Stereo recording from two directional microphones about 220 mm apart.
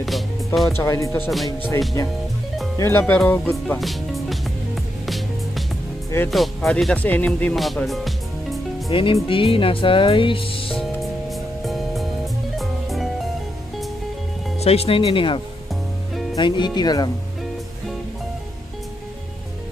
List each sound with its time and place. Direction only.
0.6 s speech: centre (ahead or behind)
0.8 s speech: 15° left (ahead or behind)
5.0 s music: centre (ahead or behind)
6.3 s speech: centre (ahead or behind)
8.9 s speech: 25° left (ahead or behind)
10.8 s music: centre (ahead or behind)
14.6 s speech: 25° left (ahead or behind)